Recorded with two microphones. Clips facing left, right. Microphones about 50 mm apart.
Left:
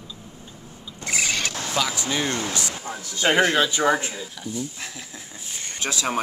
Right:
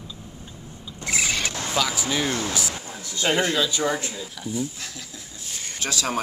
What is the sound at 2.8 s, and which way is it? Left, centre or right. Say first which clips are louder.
A man's voice: left 5 dB; left.